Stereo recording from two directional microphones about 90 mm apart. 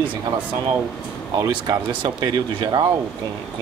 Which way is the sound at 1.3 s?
50° right (ahead or behind).